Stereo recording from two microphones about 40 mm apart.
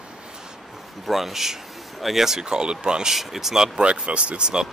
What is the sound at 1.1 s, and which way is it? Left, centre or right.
Speech, centre.